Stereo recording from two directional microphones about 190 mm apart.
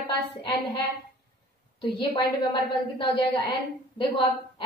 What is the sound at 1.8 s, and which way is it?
A woman's voice, 25° left (ahead or behind).